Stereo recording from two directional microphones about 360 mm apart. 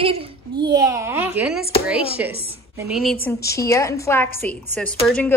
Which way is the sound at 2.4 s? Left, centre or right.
Centre.